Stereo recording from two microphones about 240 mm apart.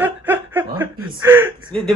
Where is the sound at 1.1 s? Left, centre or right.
Centre.